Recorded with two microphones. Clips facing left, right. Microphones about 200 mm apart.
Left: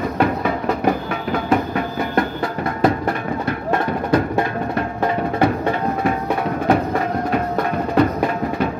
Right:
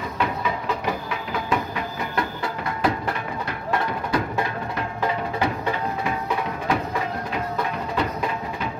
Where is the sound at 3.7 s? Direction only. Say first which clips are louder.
Left 6 dB; 45° left (ahead or behind).